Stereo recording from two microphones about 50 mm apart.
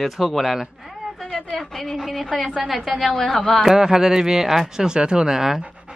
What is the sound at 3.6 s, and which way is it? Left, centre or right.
Speech, centre.